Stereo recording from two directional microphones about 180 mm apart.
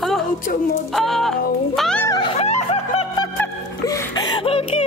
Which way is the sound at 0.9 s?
Centre (ahead or behind).